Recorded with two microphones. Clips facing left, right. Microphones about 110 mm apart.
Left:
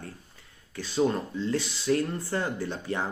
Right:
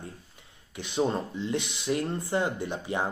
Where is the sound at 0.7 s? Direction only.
20° right (ahead or behind).